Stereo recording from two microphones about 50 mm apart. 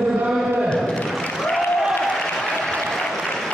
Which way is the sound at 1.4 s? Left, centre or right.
Centre.